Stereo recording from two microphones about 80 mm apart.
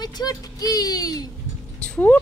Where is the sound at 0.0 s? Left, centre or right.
Left.